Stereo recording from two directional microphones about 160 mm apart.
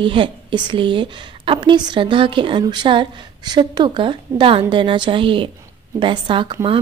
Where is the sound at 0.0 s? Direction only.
30° right (ahead or behind).